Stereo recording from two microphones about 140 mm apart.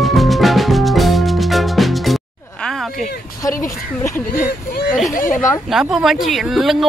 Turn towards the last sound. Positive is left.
turn(degrees=0)  # may be behind; listen again after turning